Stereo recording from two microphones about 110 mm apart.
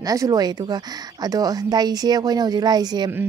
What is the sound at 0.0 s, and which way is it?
A woman's voice, 35° right (ahead or behind).